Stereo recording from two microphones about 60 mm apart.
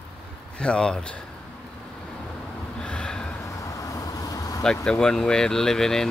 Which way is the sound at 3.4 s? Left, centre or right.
Left.